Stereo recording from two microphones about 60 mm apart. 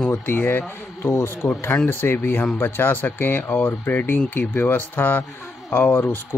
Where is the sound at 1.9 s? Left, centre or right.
Left.